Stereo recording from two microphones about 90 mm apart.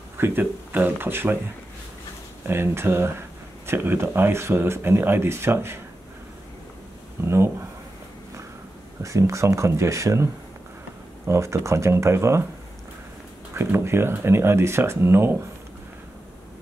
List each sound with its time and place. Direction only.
0.2 s speech: 20° right (ahead or behind)
2.4 s speech: 25° right (ahead or behind)
7.2 s speech: 30° right (ahead or behind)
9.0 s speech: 35° right (ahead or behind)
13.6 s speech: 30° right (ahead or behind)